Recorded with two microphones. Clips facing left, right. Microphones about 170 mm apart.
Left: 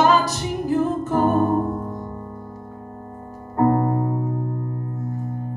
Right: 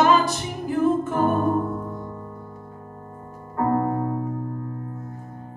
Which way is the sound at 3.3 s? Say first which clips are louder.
Left 4 dB; 35° left (ahead or behind).